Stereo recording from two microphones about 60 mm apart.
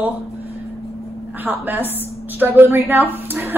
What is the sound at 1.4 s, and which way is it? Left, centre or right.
A woman's voice, right.